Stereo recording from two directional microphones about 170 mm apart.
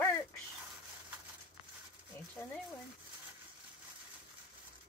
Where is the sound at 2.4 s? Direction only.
15° left (ahead or behind).